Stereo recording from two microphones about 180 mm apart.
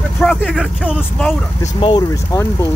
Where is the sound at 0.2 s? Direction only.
Centre (ahead or behind).